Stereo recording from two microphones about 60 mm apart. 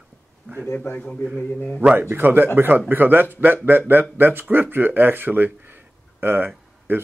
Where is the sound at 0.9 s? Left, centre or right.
Left.